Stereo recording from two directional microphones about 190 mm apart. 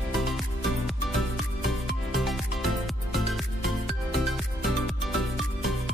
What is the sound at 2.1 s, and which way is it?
Music, centre (ahead or behind).